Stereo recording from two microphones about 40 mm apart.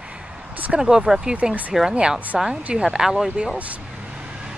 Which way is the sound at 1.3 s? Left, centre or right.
Right.